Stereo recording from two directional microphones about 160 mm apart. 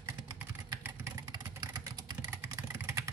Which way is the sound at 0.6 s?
20° right (ahead or behind).